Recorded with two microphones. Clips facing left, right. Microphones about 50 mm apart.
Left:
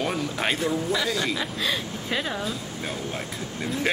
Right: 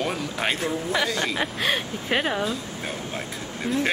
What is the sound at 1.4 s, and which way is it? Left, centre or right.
Speech, right.